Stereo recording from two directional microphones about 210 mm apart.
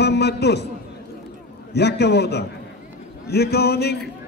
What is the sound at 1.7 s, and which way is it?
A man's voice, 50° left (ahead or behind).